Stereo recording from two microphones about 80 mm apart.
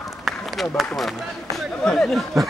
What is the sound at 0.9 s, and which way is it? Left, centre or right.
Speech, centre.